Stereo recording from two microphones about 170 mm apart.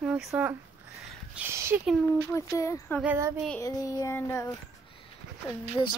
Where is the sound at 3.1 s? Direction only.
15° right (ahead or behind).